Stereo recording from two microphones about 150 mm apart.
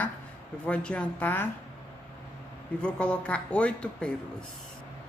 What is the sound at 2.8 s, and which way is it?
Speech, 5° left (ahead or behind).